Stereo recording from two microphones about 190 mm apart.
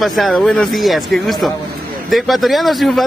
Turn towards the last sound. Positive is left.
turn(degrees=0)  # may be behind; listen again after turning